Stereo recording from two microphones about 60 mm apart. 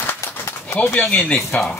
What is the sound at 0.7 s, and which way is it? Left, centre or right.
Speech, left.